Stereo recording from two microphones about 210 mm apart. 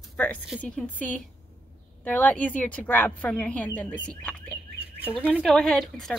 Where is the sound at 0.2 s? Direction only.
5° left (ahead or behind).